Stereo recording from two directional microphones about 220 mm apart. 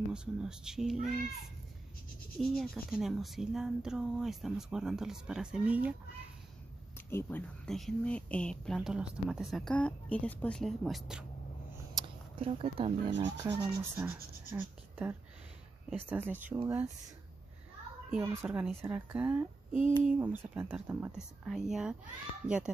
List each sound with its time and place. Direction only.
0.1 s speech: 5° right (ahead or behind)
2.5 s speech: centre (ahead or behind)
7.1 s speech: 10° left (ahead or behind)
11.9 s a sound: 20° right (ahead or behind)
13.2 s a woman's voice: 15° right (ahead or behind)
18.1 s a woman's voice: 10° right (ahead or behind)